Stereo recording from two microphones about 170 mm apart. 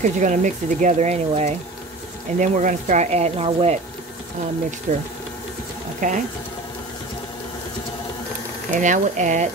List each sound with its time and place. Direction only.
0.0 s speech: 45° right (ahead or behind)
4.9 s speech: 45° right (ahead or behind)
8.7 s speech: 50° right (ahead or behind)